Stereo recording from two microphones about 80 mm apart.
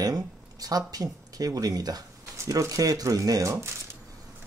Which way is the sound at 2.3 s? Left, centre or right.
Right.